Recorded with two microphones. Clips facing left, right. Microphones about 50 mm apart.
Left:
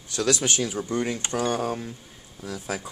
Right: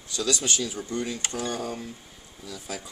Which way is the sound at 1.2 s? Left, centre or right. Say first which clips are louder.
Left 5 dB; left.